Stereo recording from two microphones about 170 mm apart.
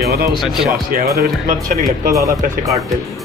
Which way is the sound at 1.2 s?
60° right (ahead or behind).